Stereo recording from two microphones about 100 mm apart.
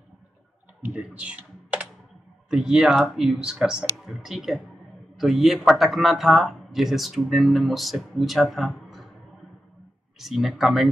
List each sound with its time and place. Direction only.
0.8 s computer keyboard: 10° right (ahead or behind)
2.5 s speech: 5° right (ahead or behind)
10.1 s speech: centre (ahead or behind)